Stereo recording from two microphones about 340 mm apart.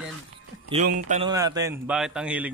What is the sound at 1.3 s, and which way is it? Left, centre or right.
Speech, centre.